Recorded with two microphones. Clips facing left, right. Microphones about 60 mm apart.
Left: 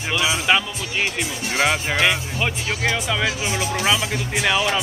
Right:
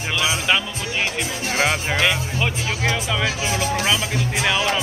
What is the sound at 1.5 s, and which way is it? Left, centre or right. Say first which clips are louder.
Speech: left 1 dB; left.